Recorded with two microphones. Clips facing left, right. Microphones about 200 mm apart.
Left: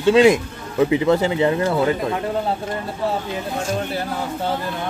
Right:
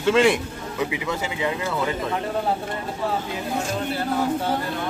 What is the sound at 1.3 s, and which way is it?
Speech, 40° left (ahead or behind).